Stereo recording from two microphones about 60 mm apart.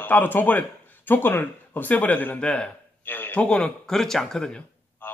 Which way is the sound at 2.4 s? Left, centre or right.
Centre.